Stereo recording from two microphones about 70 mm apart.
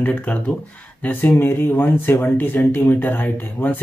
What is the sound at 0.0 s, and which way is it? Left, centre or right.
Speech, centre.